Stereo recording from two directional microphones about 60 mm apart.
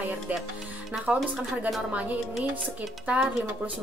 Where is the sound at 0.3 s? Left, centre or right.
Right.